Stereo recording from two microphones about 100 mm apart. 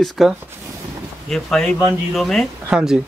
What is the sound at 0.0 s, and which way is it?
Speech, centre (ahead or behind).